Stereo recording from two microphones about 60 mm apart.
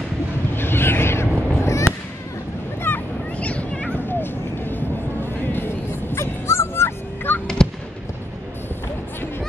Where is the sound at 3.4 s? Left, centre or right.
Left.